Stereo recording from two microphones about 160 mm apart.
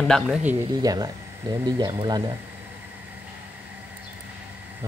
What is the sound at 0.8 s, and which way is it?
Speech, 25° right (ahead or behind).